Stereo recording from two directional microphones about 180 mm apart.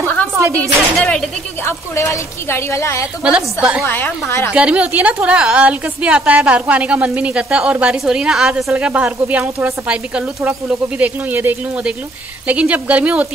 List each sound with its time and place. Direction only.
0.0 s a sound: 10° left (ahead or behind)
0.4 s a woman's voice: 15° right (ahead or behind)
0.9 s a woman's voice: 5° left (ahead or behind)
3.3 s a woman's voice: 5° right (ahead or behind)
3.8 s a woman's voice: 10° left (ahead or behind)
4.5 s a woman's voice: 5° right (ahead or behind)